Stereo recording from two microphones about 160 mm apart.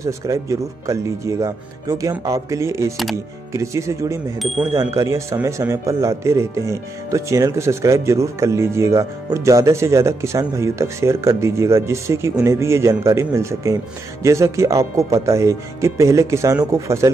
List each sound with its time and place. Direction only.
0.0 s speech: 20° right (ahead or behind)
4.4 s speech: centre (ahead or behind)
4.7 s speech: 20° right (ahead or behind)